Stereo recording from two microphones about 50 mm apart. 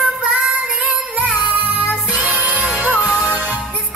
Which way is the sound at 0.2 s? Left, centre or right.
Right.